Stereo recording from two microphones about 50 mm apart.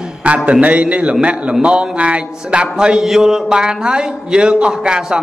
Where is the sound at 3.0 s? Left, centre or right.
Centre.